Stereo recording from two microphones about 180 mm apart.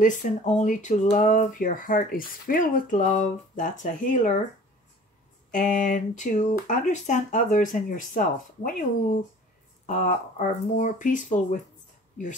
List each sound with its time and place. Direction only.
0.0 s speech: 45° left (ahead or behind)
5.5 s speech: 45° left (ahead or behind)
9.8 s speech: 45° left (ahead or behind)